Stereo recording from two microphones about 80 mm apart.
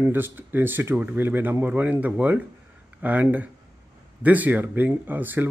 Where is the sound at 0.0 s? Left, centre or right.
Right.